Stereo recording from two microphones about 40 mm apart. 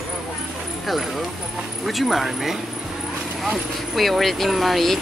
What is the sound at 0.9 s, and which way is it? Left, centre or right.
Speech, centre.